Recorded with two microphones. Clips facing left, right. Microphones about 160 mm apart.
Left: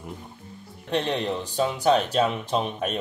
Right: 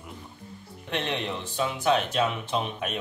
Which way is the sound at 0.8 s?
35° left (ahead or behind).